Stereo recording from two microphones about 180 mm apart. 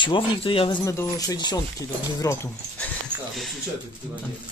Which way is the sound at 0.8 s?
20° left (ahead or behind).